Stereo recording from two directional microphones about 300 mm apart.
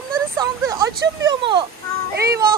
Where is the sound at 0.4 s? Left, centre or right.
Centre.